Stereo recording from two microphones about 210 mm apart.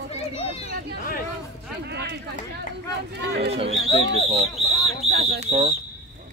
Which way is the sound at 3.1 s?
55° right (ahead or behind).